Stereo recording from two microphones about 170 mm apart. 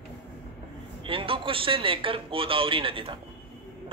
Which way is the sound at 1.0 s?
30° right (ahead or behind).